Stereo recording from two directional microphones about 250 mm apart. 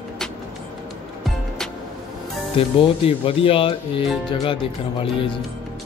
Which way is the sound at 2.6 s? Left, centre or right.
Left.